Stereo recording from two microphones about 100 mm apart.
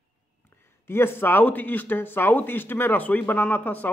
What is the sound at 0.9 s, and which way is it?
Speech, 25° left (ahead or behind).